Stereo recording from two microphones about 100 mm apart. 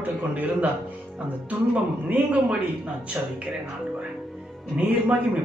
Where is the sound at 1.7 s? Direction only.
15° right (ahead or behind).